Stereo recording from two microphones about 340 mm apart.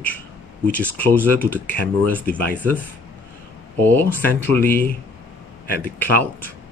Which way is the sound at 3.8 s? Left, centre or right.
Centre.